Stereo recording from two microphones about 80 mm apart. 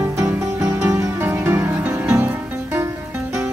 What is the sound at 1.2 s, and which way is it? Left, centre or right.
Music, right.